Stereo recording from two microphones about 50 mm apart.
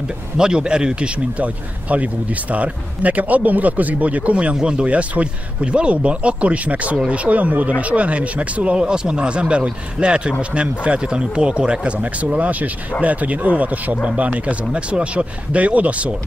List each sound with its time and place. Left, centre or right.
0.4 s speech: centre